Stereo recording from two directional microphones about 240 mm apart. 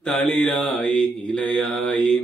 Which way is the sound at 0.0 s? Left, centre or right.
Centre.